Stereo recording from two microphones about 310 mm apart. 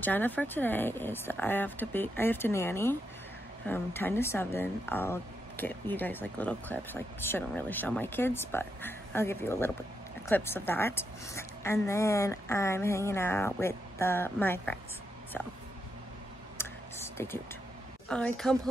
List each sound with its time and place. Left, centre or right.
0.0 s a woman's voice: centre
16.5 s a sound: centre
18.0 s a woman's voice: centre